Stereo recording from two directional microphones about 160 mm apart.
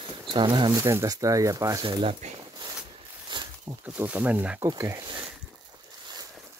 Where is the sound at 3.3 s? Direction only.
25° right (ahead or behind).